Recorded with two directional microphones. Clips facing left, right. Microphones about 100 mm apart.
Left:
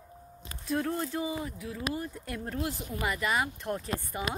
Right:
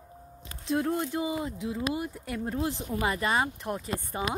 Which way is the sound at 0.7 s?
20° right (ahead or behind).